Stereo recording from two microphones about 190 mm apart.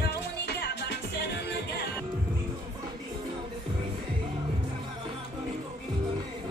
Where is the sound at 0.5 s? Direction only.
60° left (ahead or behind).